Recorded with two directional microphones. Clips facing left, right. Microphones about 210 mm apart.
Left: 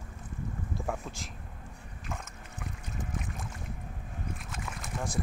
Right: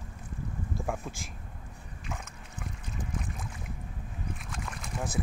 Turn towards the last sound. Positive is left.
turn(degrees=0)  # may be behind; listen again after turning